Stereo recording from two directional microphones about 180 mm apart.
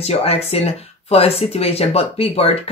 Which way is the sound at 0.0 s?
35° left (ahead or behind).